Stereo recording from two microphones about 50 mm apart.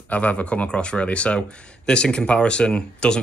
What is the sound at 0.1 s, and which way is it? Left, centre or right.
Speech, left.